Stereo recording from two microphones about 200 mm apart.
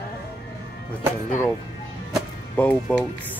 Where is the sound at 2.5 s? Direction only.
10° left (ahead or behind).